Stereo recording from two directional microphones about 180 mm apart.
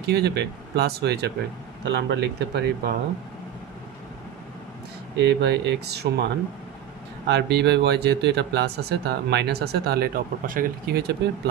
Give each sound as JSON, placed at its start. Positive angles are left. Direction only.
{"t": 0.0, "sound": "speech", "side_deg": -65}
{"t": 5.1, "sound": "speech", "side_deg": -65}